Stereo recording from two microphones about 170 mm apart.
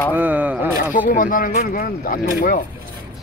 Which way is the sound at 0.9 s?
50° left (ahead or behind).